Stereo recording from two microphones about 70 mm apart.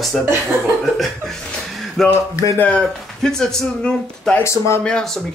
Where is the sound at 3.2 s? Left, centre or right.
Centre.